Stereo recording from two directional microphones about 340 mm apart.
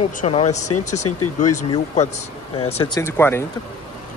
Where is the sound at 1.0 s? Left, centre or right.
Left.